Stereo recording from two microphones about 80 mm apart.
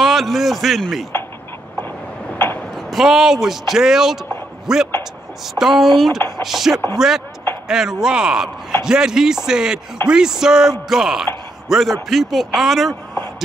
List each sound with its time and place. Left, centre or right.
0.0 s speech: centre
2.3 s a sound: left
2.7 s speech: centre